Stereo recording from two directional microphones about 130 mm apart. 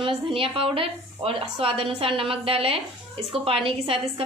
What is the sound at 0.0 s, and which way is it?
Speech, 45° right (ahead or behind).